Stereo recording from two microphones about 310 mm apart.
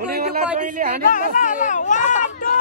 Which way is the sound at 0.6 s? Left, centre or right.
Right.